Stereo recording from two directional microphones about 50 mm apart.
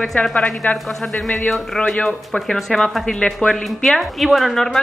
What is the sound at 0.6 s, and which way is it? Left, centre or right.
Speech, left.